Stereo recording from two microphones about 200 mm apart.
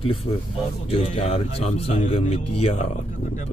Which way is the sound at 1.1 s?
35° left (ahead or behind).